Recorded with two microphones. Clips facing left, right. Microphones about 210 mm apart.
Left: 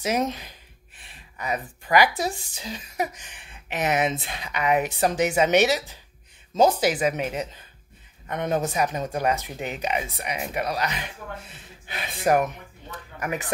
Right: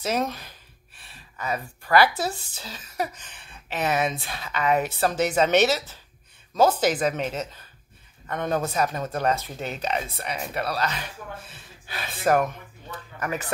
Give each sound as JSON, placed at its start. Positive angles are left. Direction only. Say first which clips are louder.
{"t": 0.0, "sound": "speech", "louder": "left 1 dB", "side_deg": 15}